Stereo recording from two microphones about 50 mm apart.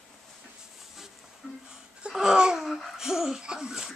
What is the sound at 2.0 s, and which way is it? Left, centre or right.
Laughter, centre.